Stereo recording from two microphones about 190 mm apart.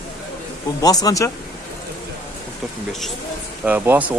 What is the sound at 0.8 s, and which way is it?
Speech, 20° left (ahead or behind).